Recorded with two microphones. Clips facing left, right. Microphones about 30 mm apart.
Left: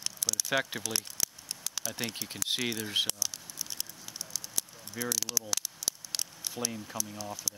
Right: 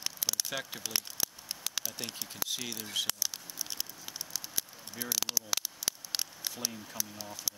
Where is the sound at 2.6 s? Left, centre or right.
Left.